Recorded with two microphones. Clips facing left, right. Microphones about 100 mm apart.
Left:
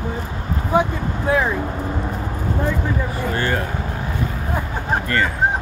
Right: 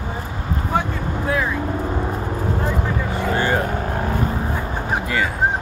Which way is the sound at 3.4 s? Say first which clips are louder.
Right 2 dB; 20° right (ahead or behind).